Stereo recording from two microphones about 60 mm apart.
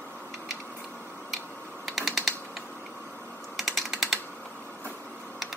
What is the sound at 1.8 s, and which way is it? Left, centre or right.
Typing, centre.